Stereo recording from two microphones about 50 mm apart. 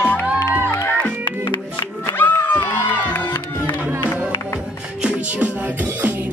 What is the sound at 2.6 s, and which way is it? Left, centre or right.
Crowd, left.